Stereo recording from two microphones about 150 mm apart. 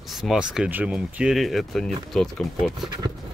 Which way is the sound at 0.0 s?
Centre (ahead or behind).